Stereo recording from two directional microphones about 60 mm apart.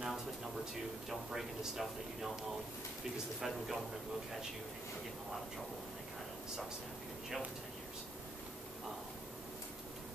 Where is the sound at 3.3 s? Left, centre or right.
Centre.